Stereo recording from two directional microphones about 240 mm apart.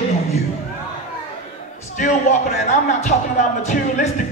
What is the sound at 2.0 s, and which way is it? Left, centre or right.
Speech, left.